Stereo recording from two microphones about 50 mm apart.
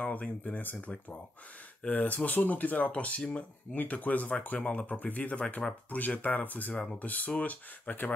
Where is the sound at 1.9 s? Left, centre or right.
Left.